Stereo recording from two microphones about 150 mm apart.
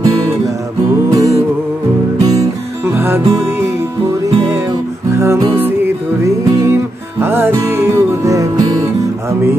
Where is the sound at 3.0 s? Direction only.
15° right (ahead or behind).